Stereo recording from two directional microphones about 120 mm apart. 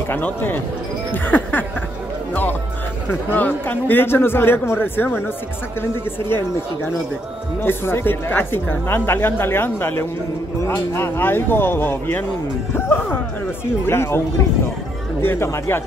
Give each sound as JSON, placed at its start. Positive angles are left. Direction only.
{"t": 0.1, "sound": "a man's voice", "side_deg": 15}
{"t": 3.1, "sound": "a man's voice", "side_deg": 15}
{"t": 15.2, "sound": "a woman's voice", "side_deg": 20}